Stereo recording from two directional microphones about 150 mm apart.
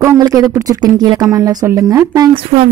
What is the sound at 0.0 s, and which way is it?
Speech, 20° right (ahead or behind).